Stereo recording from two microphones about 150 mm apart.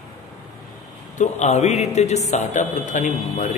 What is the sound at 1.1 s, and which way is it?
A man's voice, 55° left (ahead or behind).